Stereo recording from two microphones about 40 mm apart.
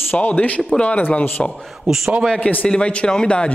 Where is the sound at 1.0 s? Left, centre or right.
Left.